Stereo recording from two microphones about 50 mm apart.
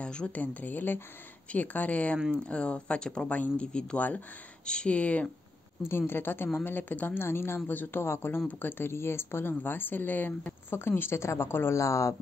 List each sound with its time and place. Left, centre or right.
0.0 s a sound: centre
0.3 s speech: left
5.9 s speech: left
7.2 s speech: left
8.0 s speech: left
10.7 s speech: left
11.7 s speech: left